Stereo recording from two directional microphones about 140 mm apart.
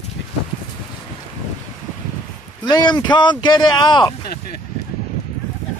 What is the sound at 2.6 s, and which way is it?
Speech, 30° left (ahead or behind).